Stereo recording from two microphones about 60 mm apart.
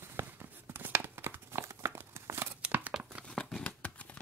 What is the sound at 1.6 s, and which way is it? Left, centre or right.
Tearing, right.